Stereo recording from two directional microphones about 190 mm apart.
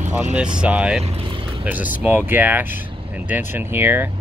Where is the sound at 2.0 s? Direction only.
10° right (ahead or behind).